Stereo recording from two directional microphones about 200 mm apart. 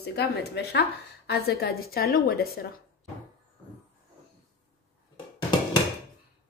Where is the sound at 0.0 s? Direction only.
55° left (ahead or behind).